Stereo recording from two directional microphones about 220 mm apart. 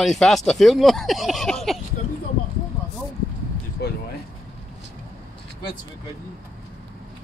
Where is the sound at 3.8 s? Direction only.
45° left (ahead or behind).